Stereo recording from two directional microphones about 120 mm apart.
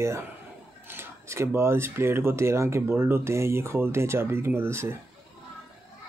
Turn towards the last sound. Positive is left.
turn(degrees=-20)  # may be behind; listen again after turning